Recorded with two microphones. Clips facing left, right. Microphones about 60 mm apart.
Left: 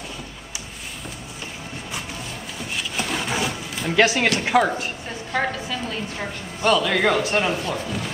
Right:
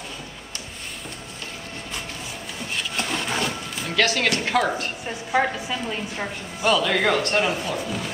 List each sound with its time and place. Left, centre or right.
2.7 s a sound: centre
3.9 s a woman's voice: centre
5.3 s a woman's voice: centre